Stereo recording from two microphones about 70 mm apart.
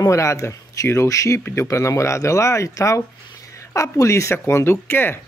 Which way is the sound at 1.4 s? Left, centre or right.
Left.